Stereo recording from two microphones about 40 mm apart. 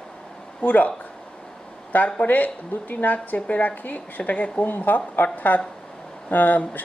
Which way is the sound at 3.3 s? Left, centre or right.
Left.